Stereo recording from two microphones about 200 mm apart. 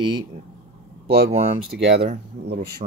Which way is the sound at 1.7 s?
60° right (ahead or behind).